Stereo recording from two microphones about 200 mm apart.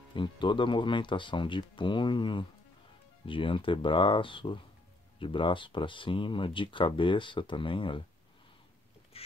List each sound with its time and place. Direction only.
0.1 s speech: 25° left (ahead or behind)
9.1 s rodents: 30° left (ahead or behind)